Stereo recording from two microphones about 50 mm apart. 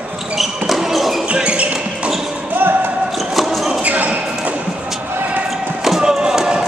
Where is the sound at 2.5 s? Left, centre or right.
Right.